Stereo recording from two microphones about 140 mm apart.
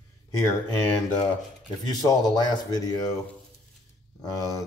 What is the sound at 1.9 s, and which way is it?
Speech, 25° left (ahead or behind).